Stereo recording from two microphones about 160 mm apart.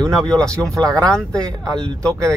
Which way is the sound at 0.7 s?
25° right (ahead or behind).